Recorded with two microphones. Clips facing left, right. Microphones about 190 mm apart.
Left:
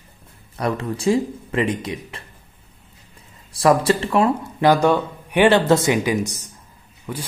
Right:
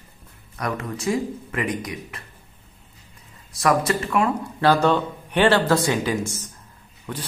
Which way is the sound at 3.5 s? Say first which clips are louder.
Left 4 dB; 30° left (ahead or behind).